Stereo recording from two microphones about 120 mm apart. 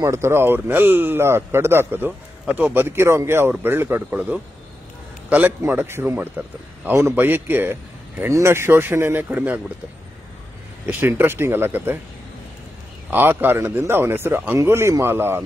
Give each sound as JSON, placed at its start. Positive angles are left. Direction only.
{"t": 0.0, "sound": "a man's voice", "side_deg": -25}
{"t": 5.6, "sound": "a man's voice", "side_deg": -20}
{"t": 10.9, "sound": "a man's voice", "side_deg": -15}
{"t": 13.1, "sound": "speech", "side_deg": -15}